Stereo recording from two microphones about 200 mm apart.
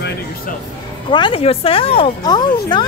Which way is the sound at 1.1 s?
25° left (ahead or behind).